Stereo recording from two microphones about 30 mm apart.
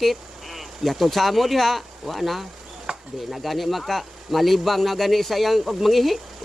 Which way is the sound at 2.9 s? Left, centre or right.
Right.